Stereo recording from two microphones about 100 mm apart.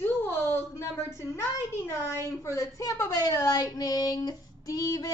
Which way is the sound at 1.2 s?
30° left (ahead or behind).